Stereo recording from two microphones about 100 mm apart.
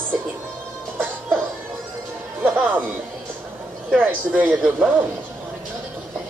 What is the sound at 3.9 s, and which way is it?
Speech, 15° right (ahead or behind).